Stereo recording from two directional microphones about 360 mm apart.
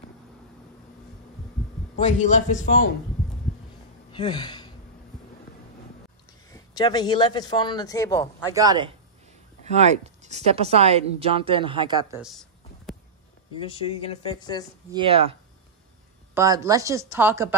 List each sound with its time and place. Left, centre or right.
2.0 s a man's voice: centre
4.1 s speech: centre
6.5 s speech: centre
8.5 s speech: centre
13.6 s speech: centre
14.9 s speech: centre
16.3 s speech: centre